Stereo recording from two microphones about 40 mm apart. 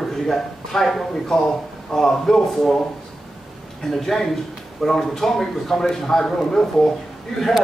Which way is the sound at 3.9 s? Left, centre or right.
Centre.